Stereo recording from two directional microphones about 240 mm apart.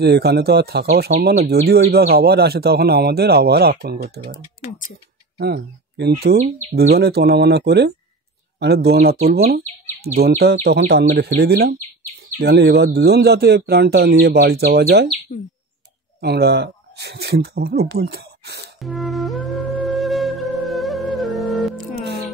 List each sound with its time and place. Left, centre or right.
0.0 s speech: right
5.4 s speech: right
10.4 s speech: right
16.2 s speech: right
18.8 s flute: centre